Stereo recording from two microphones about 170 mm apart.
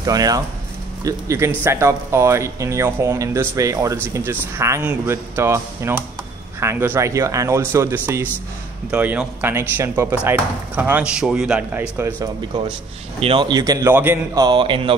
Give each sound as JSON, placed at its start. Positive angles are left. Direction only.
{"t": 0.0, "sound": "speech", "side_deg": -20}
{"t": 13.2, "sound": "speech", "side_deg": -30}